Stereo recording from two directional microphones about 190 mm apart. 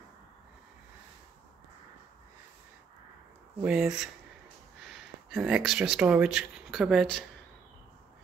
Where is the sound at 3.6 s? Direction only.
5° right (ahead or behind).